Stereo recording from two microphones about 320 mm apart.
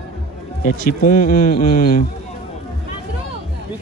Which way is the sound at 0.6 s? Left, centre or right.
Left.